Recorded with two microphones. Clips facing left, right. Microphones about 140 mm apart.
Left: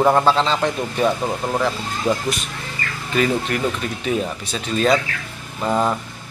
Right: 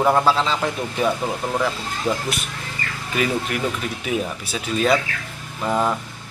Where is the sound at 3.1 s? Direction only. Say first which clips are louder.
Left 3 dB; 10° right (ahead or behind).